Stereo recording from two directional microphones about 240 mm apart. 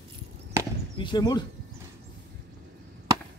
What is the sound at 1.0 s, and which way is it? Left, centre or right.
Speech, centre.